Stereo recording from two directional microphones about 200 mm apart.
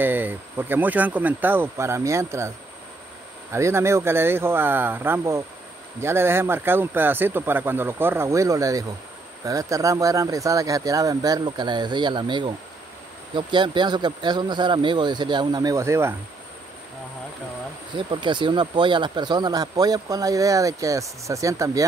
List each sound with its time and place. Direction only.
0.0 s speech: 10° right (ahead or behind)
3.5 s speech: 15° right (ahead or behind)
17.9 s speech: 25° right (ahead or behind)